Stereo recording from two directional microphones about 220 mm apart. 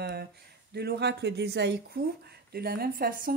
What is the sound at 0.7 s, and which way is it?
Speech, 45° right (ahead or behind).